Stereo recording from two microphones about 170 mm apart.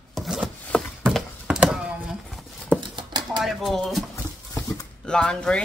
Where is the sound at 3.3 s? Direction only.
Centre (ahead or behind).